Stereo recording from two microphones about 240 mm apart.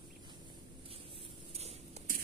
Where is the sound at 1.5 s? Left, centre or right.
Right.